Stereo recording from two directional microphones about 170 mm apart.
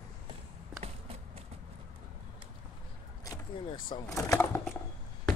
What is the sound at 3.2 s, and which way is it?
Speech, 20° left (ahead or behind).